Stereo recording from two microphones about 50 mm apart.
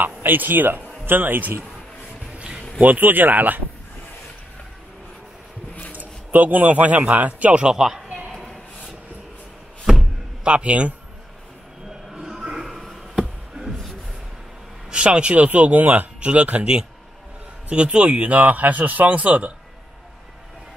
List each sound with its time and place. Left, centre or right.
0.0 s a man's voice: right
2.3 s a sound: right
2.8 s speech: right
5.9 s a man's voice: right
7.7 s speech: centre
8.3 s a sound: centre
10.4 s speech: right
12.1 s music: centre
12.8 s a sound: centre
14.9 s speech: right
17.6 s speech: right